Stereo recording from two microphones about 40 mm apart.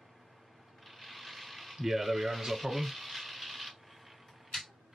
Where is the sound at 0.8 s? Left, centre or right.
Centre.